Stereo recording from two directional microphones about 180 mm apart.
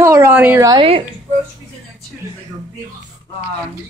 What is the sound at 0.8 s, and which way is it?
Speech, 30° right (ahead or behind).